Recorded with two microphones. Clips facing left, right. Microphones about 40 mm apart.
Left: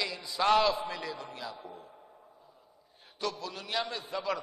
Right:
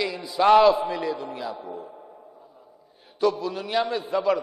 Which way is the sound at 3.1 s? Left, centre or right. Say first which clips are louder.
Right 12 dB; centre.